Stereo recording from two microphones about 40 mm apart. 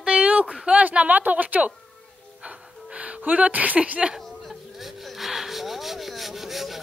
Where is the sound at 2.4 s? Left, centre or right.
Right.